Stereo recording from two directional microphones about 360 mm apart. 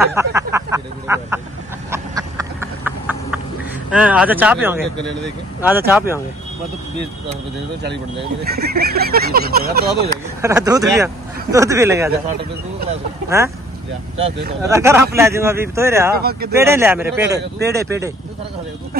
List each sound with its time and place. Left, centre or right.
0.0 s a sound: centre
3.9 s speech: centre
8.5 s speech: right
10.4 s speech: centre
13.4 s speech: centre
14.6 s speech: centre
16.1 s speech: right
16.5 s speech: centre